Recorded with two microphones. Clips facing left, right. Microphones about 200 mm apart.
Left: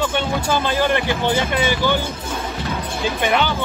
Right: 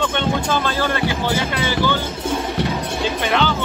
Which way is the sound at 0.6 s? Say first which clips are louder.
Left 2 dB; 15° left (ahead or behind).